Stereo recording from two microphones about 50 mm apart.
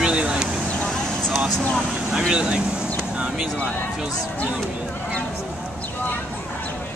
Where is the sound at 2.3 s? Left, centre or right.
Centre.